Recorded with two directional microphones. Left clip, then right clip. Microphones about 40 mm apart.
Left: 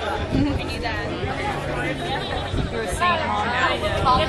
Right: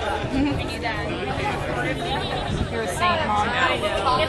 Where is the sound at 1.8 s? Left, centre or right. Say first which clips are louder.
Even; centre.